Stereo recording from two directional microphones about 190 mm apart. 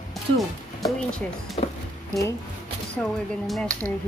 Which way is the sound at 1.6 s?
30° left (ahead or behind).